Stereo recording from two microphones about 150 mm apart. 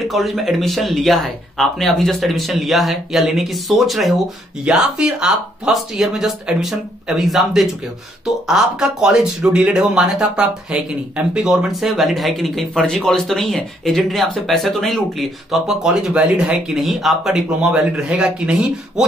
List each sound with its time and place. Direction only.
0.1 s speech: centre (ahead or behind)